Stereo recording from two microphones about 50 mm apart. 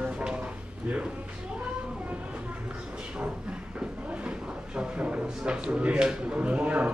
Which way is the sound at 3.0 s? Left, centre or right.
Right.